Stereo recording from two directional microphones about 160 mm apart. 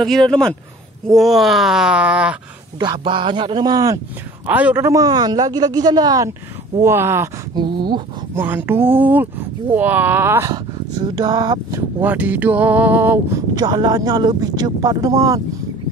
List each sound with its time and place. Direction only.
0.0 s groan: centre (ahead or behind)
2.8 s a man's voice: 30° right (ahead or behind)
4.5 s a man's voice: 10° right (ahead or behind)
7.5 s a man's voice: 30° right (ahead or behind)
8.4 s speech: 15° right (ahead or behind)
12.0 s speech: 10° right (ahead or behind)
13.6 s a man's voice: 25° right (ahead or behind)